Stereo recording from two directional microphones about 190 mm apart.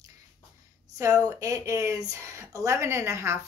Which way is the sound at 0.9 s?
15° right (ahead or behind).